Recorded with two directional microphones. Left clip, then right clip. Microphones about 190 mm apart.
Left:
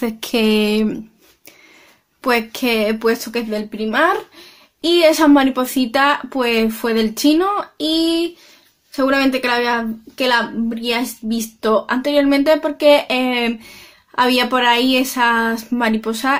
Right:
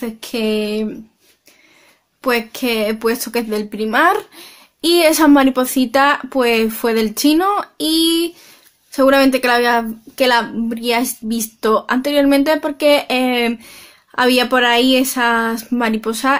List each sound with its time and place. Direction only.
0.0 s speech: 25° left (ahead or behind)
2.2 s speech: centre (ahead or behind)
3.1 s speech: 20° right (ahead or behind)